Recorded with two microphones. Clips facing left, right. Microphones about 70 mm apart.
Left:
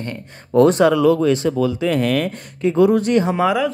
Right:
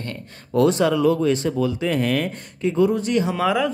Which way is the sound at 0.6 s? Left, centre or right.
Left.